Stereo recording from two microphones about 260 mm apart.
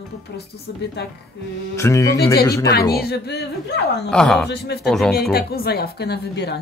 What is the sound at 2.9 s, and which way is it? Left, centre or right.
Speech, left.